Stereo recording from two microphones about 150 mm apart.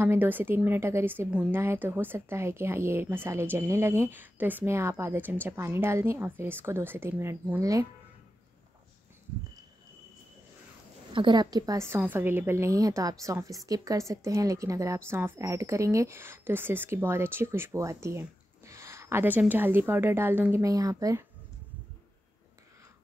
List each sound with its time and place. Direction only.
0.0 s a woman's voice: 15° right (ahead or behind)
11.1 s a woman's voice: 30° right (ahead or behind)